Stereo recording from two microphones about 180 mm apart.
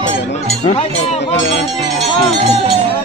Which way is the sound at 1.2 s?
75° left (ahead or behind).